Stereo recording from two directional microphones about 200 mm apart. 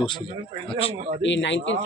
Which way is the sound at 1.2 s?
65° left (ahead or behind).